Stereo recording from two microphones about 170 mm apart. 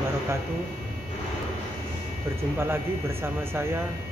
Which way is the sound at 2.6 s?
15° right (ahead or behind).